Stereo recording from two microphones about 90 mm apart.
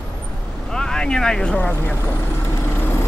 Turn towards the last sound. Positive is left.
turn(degrees=25)  # may be behind; listen again after turning